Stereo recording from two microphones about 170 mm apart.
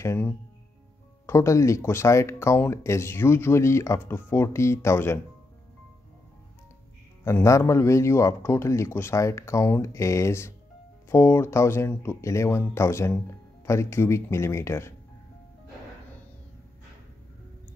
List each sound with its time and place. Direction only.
0.0 s speech: 15° left (ahead or behind)
7.2 s speech: 15° left (ahead or behind)